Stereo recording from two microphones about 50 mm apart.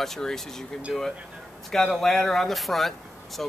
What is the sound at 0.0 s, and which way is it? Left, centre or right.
Speech, centre.